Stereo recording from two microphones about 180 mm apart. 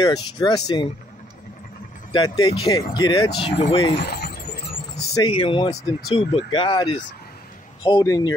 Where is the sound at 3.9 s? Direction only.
60° left (ahead or behind).